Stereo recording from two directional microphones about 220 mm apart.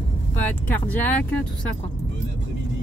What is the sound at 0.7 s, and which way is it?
Speech, 5° left (ahead or behind).